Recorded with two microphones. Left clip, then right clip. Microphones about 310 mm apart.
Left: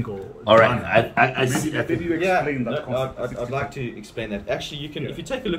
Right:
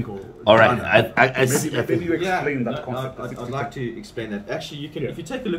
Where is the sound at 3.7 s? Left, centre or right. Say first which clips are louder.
Right 1 dB; centre.